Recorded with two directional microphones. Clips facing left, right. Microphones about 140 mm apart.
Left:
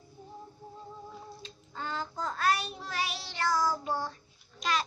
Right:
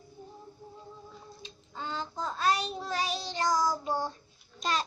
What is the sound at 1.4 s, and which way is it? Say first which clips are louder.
Child singing: right 2 dB; 20° right (ahead or behind).